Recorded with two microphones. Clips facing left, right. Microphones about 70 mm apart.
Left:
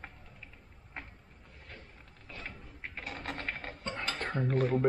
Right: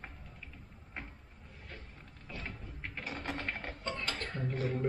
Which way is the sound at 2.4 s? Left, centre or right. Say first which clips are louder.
Left 1 dB; centre.